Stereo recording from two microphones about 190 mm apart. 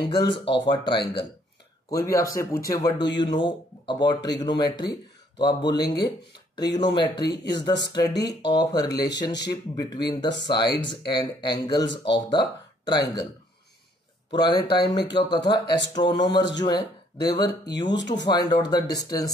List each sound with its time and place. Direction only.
0.0 s a man's voice: 25° left (ahead or behind)
11.9 s speech: 70° left (ahead or behind)
12.3 s speech: 20° left (ahead or behind)
14.3 s speech: 20° left (ahead or behind)
14.9 s speech: 65° left (ahead or behind)
15.2 s speech: 25° left (ahead or behind)
17.8 s speech: 65° left (ahead or behind)
18.1 s speech: 20° left (ahead or behind)